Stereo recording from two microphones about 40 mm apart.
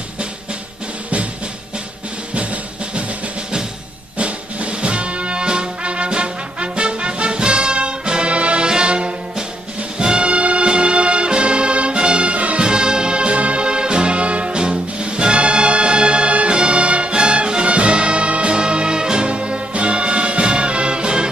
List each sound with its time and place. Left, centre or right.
2.3 s drum: right
4.2 s music: right
12.6 s music: centre